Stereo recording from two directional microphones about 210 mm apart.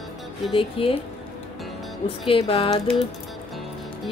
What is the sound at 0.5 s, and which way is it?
Speech, 25° left (ahead or behind).